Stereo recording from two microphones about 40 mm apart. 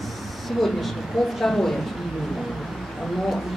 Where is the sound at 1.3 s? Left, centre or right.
Centre.